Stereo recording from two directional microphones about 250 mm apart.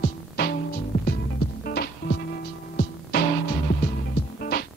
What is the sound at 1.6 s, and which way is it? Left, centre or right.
Music, left.